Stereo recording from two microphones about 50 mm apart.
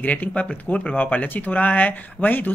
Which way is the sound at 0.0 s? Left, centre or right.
Left.